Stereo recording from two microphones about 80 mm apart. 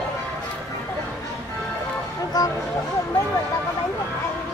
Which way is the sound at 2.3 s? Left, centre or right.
Left.